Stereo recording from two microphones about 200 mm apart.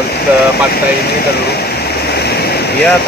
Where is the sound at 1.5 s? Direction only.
55° left (ahead or behind).